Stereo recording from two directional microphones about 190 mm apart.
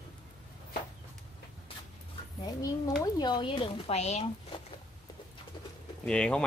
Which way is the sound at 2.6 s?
20° left (ahead or behind).